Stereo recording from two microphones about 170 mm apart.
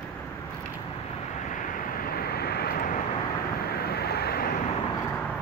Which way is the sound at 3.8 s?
70° left (ahead or behind).